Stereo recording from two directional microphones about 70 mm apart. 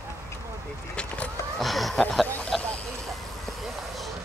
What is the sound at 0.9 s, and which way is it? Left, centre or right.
Vehicle, centre.